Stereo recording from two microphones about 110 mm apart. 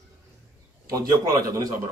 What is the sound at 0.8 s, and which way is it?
Speech, 35° right (ahead or behind).